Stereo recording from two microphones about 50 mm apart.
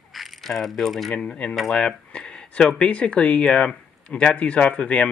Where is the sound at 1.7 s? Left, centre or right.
Centre.